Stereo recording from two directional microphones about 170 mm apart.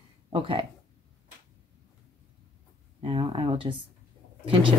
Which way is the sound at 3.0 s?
30° right (ahead or behind).